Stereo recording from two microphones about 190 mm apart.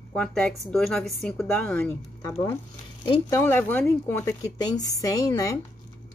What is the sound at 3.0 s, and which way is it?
A woman's voice, 20° left (ahead or behind).